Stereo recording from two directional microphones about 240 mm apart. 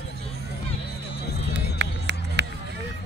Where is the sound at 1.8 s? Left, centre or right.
Right.